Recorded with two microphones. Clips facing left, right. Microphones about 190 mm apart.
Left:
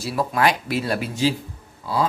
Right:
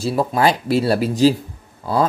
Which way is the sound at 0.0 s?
25° right (ahead or behind).